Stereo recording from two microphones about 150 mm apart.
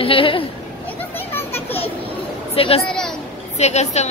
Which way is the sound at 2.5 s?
40° left (ahead or behind).